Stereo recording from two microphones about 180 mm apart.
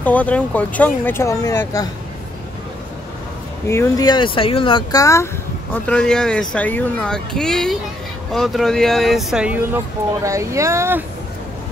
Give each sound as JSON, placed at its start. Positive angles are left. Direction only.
{"t": 0.0, "sound": "speech", "side_deg": 10}
{"t": 3.6, "sound": "speech", "side_deg": 15}
{"t": 5.9, "sound": "speech", "side_deg": 5}